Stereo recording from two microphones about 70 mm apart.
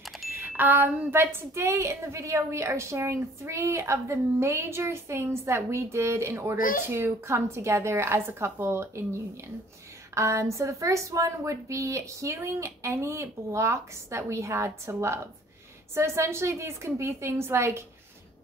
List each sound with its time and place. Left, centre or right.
0.6 s a woman's voice: right